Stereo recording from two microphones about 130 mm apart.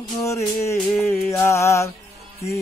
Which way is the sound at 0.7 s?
10° left (ahead or behind).